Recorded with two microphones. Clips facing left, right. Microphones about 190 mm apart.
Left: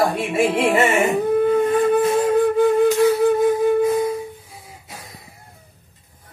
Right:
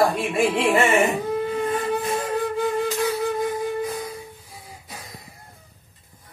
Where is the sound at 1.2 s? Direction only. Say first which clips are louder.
Left 8 dB; 55° left (ahead or behind).